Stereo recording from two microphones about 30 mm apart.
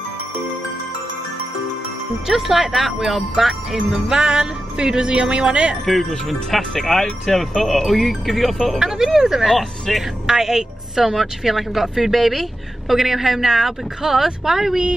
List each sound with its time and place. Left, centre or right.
2.2 s speech: centre
4.1 s speech: right
5.9 s speech: centre
8.7 s speech: centre
9.5 s speech: centre
10.2 s speech: centre